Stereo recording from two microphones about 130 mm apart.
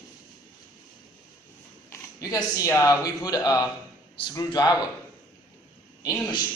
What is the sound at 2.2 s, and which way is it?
A man's voice, 25° left (ahead or behind).